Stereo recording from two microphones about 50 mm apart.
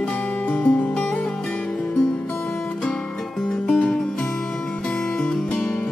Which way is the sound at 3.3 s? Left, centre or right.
Centre.